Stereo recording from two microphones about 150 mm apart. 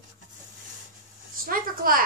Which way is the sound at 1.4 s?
70° right (ahead or behind).